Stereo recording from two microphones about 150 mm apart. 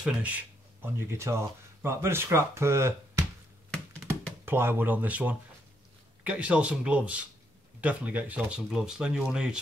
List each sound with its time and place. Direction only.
0.0 s speech: 10° right (ahead or behind)
4.5 s speech: 15° right (ahead or behind)